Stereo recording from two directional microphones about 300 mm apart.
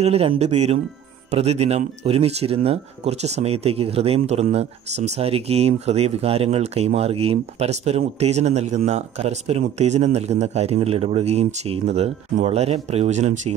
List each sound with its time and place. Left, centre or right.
0.0 s speech: centre